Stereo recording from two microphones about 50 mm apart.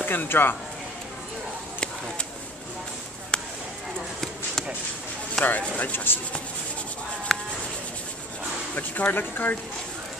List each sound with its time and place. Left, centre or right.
0.0 s speech: left
5.4 s speech: centre
5.8 s speech: left
7.3 s a sound: centre
8.7 s speech: left